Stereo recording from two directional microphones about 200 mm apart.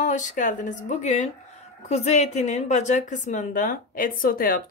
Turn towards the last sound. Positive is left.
turn(degrees=45)  # may be behind; listen again after turning